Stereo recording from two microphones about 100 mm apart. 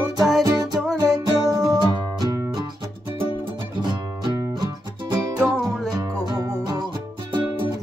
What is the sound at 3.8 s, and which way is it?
Music, 45° right (ahead or behind).